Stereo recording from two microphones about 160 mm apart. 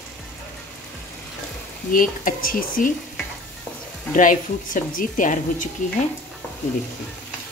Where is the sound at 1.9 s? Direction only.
60° left (ahead or behind).